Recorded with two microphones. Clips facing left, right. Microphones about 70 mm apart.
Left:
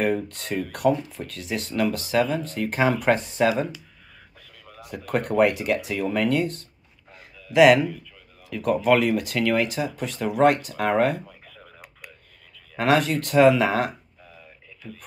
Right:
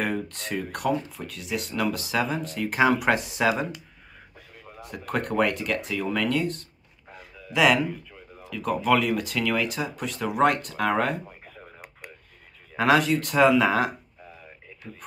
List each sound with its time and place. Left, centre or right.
0.0 s speech: centre
4.7 s speech: centre
11.2 s a sound: right
12.7 s speech: centre
14.8 s speech: right